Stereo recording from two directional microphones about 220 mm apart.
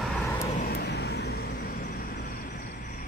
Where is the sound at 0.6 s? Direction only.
45° left (ahead or behind).